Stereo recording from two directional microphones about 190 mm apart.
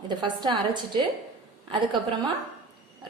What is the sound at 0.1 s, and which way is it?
A woman's voice, 25° right (ahead or behind).